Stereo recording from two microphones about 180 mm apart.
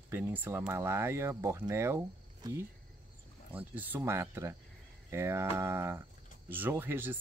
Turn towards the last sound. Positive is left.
turn(degrees=-10)  # may be behind; listen again after turning